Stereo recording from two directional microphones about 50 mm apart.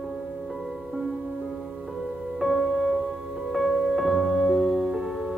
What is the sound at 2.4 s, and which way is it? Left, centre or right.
Music, centre.